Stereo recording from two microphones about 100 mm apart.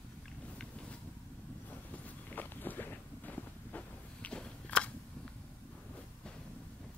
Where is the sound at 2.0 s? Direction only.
20° left (ahead or behind).